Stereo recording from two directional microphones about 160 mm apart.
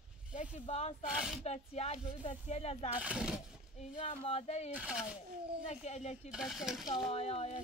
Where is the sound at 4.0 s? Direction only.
40° left (ahead or behind).